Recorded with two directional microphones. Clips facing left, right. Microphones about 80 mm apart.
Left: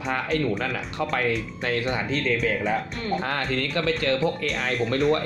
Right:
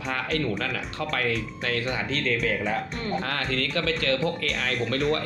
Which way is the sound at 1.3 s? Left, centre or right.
Left.